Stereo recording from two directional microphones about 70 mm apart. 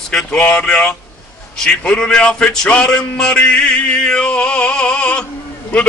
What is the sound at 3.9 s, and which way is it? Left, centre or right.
Music, centre.